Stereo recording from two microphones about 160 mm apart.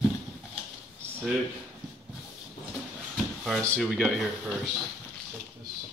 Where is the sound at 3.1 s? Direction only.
Centre (ahead or behind).